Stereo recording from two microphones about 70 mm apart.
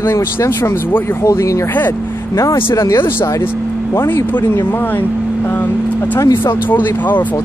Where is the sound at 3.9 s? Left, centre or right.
Left.